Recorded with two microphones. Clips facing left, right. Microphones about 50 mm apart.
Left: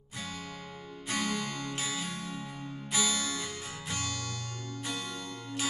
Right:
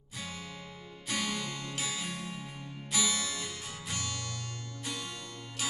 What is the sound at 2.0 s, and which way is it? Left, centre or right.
Music, right.